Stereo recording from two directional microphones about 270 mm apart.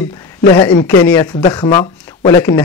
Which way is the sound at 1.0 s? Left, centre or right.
Centre.